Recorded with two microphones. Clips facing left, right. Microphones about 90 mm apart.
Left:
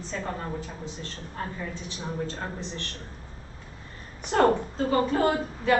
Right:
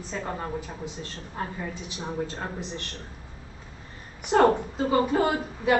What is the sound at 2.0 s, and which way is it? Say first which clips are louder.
Speech: right 1 dB; 10° right (ahead or behind).